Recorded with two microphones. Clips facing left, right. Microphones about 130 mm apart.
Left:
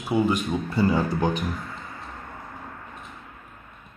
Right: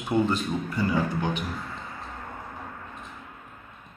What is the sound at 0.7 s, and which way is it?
Speech, 35° left (ahead or behind).